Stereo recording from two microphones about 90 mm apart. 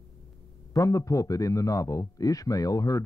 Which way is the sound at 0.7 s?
35° left (ahead or behind).